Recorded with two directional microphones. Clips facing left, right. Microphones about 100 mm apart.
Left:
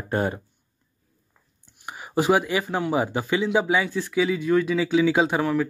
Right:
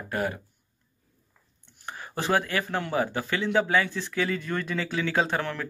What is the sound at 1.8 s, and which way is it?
Speech, 10° left (ahead or behind).